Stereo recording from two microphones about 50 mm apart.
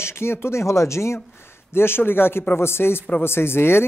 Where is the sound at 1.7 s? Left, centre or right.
Left.